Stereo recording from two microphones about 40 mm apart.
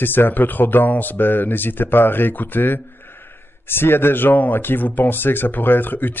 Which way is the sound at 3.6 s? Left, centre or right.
Left.